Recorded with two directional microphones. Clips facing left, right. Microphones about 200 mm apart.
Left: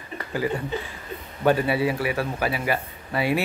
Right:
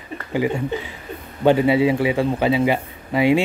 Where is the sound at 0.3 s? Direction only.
20° right (ahead or behind).